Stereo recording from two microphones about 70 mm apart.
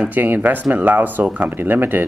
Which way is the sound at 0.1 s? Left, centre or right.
Right.